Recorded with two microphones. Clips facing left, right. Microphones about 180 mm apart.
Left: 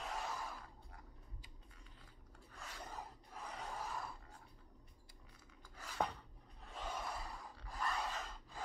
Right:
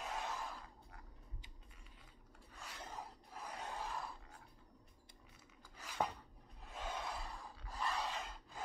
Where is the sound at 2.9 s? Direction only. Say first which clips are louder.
Even; 10° right (ahead or behind).